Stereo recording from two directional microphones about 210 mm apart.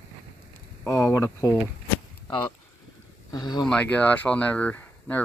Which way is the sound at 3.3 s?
20° left (ahead or behind).